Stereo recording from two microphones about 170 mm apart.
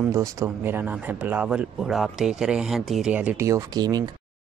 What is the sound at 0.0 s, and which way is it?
Speech, 15° right (ahead or behind).